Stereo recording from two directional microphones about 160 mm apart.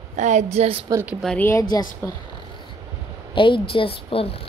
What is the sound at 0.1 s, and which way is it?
Speech, 45° right (ahead or behind).